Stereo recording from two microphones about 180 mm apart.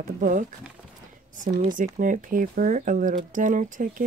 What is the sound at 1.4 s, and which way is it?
Speech, 45° right (ahead or behind).